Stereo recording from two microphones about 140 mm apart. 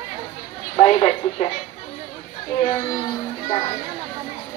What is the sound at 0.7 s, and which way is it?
Speech, 40° left (ahead or behind).